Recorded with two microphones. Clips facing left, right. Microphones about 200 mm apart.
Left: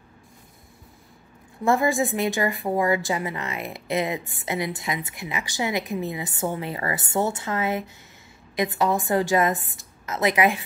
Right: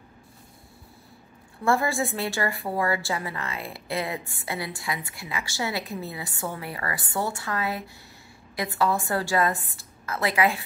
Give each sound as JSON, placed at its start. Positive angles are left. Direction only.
{"t": 1.6, "sound": "a woman's voice", "side_deg": 15}